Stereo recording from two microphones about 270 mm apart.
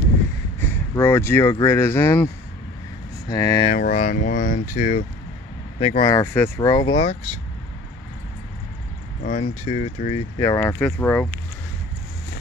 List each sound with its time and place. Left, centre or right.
0.9 s speech: centre
3.3 s speech: centre
3.7 s speech: left
9.2 s speech: left
10.4 s speech: centre